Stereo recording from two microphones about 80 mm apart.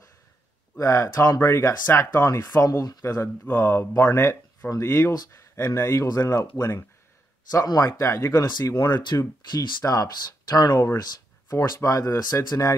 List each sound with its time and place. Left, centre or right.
0.7 s speech: left
2.6 s speech: left
3.4 s speech: left
4.6 s speech: left
4.8 s speech: left
7.8 s speech: left
8.8 s speech: left
9.8 s speech: left
11.0 s a sound: left
11.5 s speech: left